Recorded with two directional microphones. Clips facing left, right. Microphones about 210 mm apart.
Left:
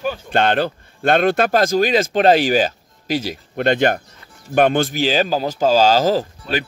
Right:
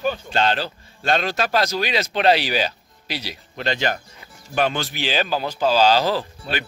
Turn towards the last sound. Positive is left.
turn(degrees=40)  # may be behind; listen again after turning